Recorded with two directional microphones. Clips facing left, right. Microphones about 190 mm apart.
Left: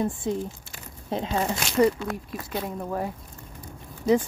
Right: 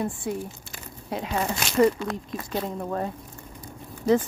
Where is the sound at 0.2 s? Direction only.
20° left (ahead or behind).